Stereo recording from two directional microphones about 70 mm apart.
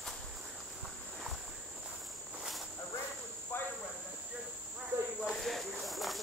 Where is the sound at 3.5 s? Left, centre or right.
Left.